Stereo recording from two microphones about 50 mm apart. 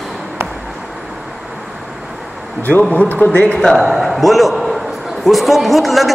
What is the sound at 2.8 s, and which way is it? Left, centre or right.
Speech, left.